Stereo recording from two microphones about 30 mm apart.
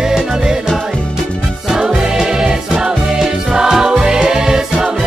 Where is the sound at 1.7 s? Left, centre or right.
Right.